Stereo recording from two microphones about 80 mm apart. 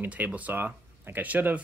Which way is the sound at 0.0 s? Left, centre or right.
Centre.